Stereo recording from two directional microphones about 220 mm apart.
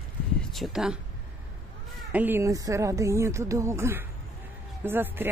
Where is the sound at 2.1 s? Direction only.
10° right (ahead or behind).